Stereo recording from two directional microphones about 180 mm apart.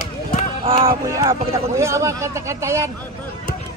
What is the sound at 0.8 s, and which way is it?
Speech, 20° right (ahead or behind).